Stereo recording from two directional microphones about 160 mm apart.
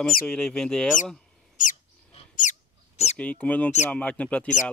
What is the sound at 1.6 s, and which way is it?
Owl, 55° left (ahead or behind).